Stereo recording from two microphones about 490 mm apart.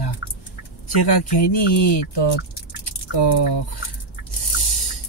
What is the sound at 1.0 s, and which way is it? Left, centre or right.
Speech, left.